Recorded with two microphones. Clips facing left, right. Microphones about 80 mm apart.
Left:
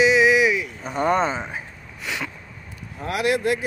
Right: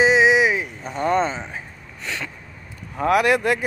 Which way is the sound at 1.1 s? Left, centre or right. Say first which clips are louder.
Right 2 dB; centre.